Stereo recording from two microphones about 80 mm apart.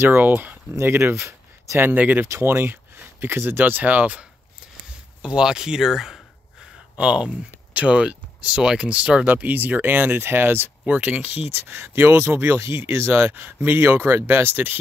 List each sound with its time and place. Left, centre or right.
0.0 s speech: right
2.2 s speech: right
2.5 s speech: right; by 6.2 s centre
7.0 s speech: centre